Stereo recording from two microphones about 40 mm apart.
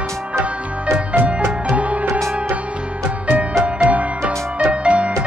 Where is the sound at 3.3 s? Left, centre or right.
Right.